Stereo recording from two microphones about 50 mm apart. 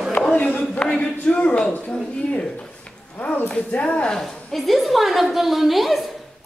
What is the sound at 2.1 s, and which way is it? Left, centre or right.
Speech, left.